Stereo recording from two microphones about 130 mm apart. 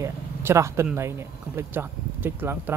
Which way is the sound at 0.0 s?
20° right (ahead or behind).